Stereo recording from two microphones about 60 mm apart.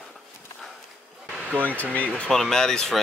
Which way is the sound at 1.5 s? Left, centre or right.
Right.